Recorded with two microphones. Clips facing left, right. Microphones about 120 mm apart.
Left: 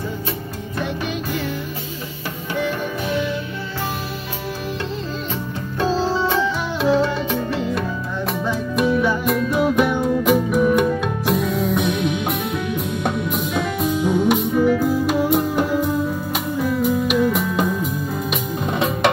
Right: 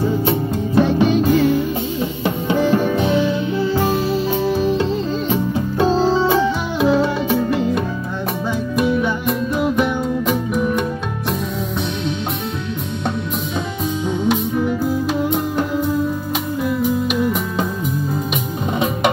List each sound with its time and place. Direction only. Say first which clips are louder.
1.0 s music: right 11 dB; 40° right (ahead or behind)
2.5 s music: right 7 dB; 30° right (ahead or behind)
5.3 s music: right 8 dB; 20° right (ahead or behind)
6.9 s music: right 1 dB; 10° right (ahead or behind)
9.0 s music: left 1 dB; centre (ahead or behind)
14.0 s music: left 1 dB; 10° left (ahead or behind)